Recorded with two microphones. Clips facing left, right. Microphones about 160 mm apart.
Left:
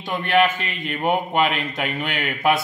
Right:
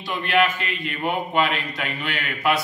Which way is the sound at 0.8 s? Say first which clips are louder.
Left 4 dB; 40° left (ahead or behind).